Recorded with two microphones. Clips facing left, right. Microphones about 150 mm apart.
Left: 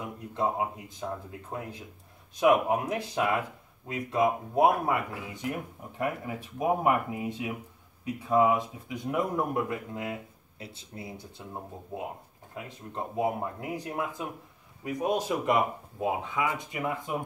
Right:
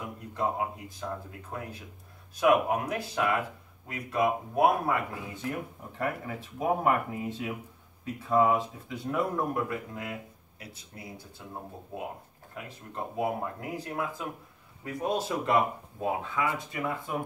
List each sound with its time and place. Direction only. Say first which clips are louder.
0.0 s speech: left 1 dB; 20° left (ahead or behind)
2.4 s speech: left 1 dB; 20° left (ahead or behind)
12.5 s speech: left 1 dB; 20° left (ahead or behind)